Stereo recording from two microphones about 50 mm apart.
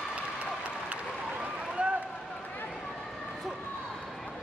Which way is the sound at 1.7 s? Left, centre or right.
Right.